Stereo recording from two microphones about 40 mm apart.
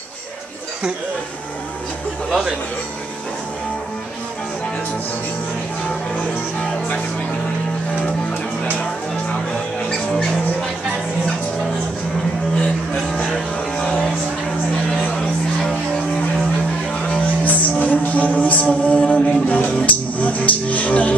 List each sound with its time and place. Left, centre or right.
16.9 s music: left